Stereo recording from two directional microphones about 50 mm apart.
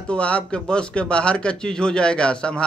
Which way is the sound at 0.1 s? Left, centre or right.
Left.